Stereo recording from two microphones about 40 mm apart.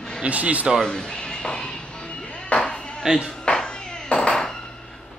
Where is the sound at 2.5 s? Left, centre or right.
Left.